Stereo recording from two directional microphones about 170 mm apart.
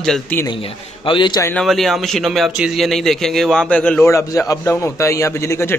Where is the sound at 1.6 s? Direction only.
Centre (ahead or behind).